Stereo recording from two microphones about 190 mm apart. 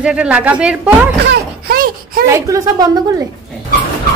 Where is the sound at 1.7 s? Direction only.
50° right (ahead or behind).